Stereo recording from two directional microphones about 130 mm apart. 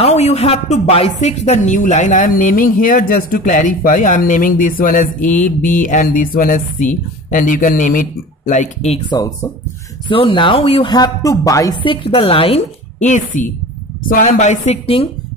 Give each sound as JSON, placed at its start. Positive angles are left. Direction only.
{"t": 0.0, "sound": "speech", "side_deg": 60}
{"t": 10.0, "sound": "speech", "side_deg": 40}
{"t": 11.8, "sound": "a woman's voice", "side_deg": 40}